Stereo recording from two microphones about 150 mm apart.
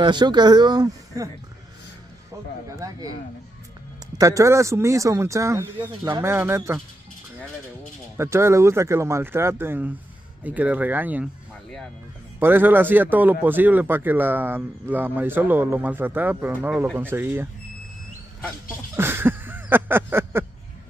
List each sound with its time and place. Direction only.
0.0 s speech: 30° right (ahead or behind)
2.7 s speech: 20° right (ahead or behind)
4.2 s speech: 20° right (ahead or behind)
5.8 s speech: 30° right (ahead or behind)
6.2 s a man's voice: 15° right (ahead or behind)
8.2 s a man's voice: 15° right (ahead or behind)
12.4 s a man's voice: 15° right (ahead or behind)
18.9 s a sound: 15° right (ahead or behind)